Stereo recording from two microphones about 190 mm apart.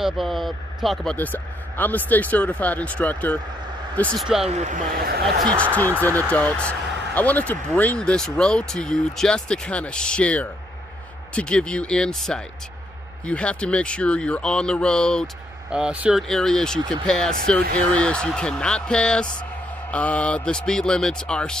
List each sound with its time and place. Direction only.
0.0 s speech: centre (ahead or behind)
4.5 s speech: 40° right (ahead or behind)
6.0 s speech: 10° left (ahead or behind)